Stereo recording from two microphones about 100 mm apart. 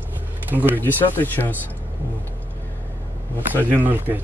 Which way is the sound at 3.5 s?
20° right (ahead or behind).